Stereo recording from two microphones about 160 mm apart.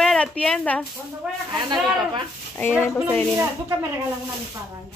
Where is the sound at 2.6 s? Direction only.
10° left (ahead or behind).